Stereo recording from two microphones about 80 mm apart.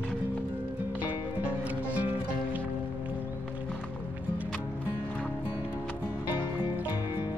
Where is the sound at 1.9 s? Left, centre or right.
Centre.